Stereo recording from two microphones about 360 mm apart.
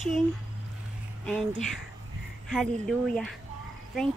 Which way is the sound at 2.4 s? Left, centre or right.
Centre.